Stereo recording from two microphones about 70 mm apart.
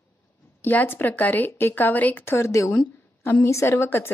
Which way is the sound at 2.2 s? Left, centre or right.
Left.